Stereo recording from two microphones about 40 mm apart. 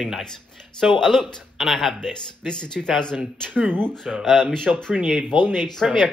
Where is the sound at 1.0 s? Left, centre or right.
Centre.